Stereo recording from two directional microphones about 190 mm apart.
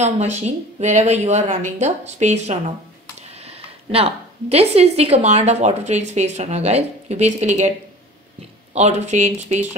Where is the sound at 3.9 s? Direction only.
30° right (ahead or behind).